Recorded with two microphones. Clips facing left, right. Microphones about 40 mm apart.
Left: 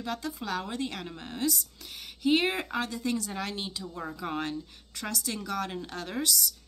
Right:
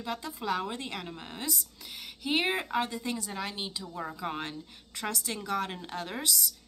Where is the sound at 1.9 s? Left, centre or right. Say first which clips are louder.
Left 7 dB; centre.